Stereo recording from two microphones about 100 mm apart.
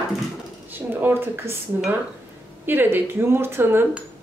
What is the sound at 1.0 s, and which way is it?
Speech, 25° right (ahead or behind).